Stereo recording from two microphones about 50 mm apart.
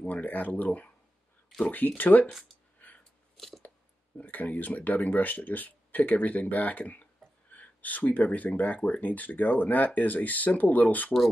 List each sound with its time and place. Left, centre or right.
0.0 s speech: left
3.3 s a sound: centre
4.2 s speech: left